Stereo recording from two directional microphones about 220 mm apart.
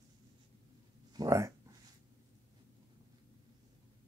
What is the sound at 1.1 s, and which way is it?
Speech, 15° right (ahead or behind).